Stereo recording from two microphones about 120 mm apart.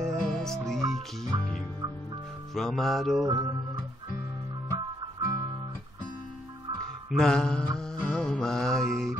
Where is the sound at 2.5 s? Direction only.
Centre (ahead or behind).